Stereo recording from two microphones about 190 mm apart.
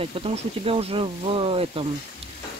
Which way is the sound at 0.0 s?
30° right (ahead or behind).